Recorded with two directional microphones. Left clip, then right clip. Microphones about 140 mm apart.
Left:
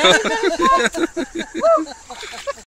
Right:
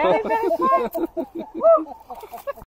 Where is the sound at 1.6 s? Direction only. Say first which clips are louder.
Even; 90° left.